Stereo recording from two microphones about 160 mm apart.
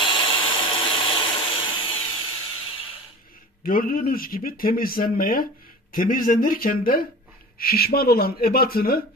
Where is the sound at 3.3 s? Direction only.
65° left (ahead or behind).